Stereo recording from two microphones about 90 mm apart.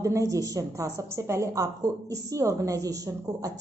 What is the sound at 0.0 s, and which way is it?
A woman's voice, 35° right (ahead or behind).